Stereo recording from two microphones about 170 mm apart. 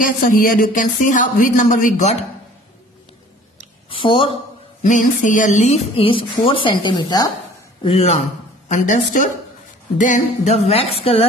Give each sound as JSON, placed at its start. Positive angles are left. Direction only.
{"t": 0.0, "sound": "speech", "side_deg": 55}
{"t": 3.9, "sound": "speech", "side_deg": 30}
{"t": 4.8, "sound": "speech", "side_deg": 50}
{"t": 7.8, "sound": "speech", "side_deg": 35}